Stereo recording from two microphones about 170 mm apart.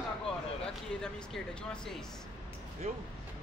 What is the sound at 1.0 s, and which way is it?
Speech, 5° left (ahead or behind).